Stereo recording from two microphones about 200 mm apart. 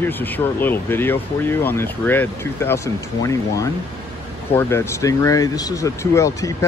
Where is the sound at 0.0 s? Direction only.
10° left (ahead or behind).